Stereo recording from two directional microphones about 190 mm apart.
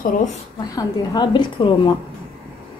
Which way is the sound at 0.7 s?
20° left (ahead or behind).